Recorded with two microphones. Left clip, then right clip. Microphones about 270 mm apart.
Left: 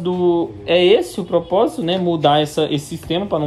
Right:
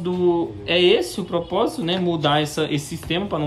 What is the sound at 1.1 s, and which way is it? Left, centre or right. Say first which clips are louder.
Speech: left 6 dB; right.